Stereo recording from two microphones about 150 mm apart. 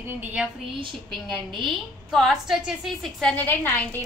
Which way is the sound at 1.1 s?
Centre (ahead or behind).